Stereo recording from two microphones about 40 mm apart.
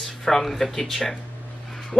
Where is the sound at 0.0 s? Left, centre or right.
Centre.